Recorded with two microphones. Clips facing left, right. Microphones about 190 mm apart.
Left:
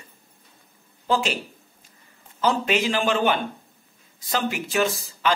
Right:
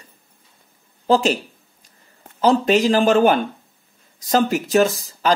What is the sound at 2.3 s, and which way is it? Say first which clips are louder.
Speech: right 7 dB; 35° right (ahead or behind).